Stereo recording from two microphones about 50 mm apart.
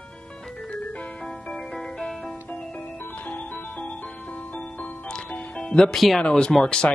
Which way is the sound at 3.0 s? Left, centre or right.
Left.